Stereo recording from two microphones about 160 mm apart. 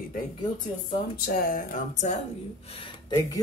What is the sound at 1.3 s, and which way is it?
Speech, 65° left (ahead or behind).